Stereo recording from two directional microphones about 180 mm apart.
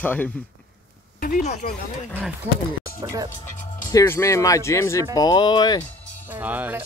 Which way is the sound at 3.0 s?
20° right (ahead or behind).